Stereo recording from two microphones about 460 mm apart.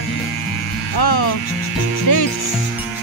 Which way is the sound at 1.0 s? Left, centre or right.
Left.